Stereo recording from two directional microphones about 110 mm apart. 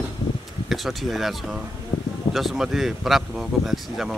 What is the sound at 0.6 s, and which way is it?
Speech, centre (ahead or behind).